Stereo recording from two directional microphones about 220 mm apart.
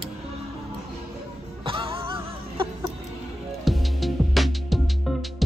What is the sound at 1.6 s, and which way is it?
Music, 25° right (ahead or behind).